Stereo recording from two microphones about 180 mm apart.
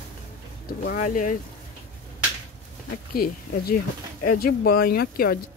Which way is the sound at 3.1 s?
55° left (ahead or behind).